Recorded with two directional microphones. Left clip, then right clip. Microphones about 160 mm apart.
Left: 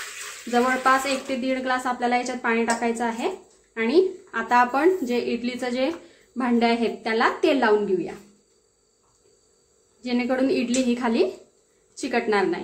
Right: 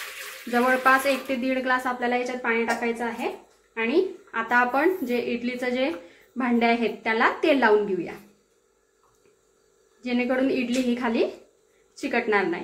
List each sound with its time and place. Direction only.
0.5 s a woman's voice: 5° left (ahead or behind)
10.0 s a woman's voice: 15° left (ahead or behind)